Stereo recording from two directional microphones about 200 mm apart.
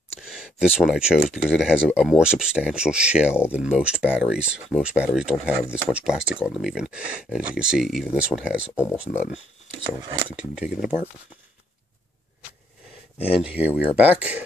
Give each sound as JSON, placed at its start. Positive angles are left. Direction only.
{"t": 0.3, "sound": "speech", "side_deg": -5}
{"t": 9.8, "sound": "speech", "side_deg": -15}
{"t": 10.5, "sound": "speech", "side_deg": -5}
{"t": 13.2, "sound": "speech", "side_deg": -5}